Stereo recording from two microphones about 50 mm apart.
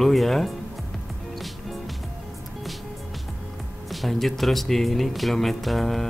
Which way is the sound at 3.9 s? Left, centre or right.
Centre.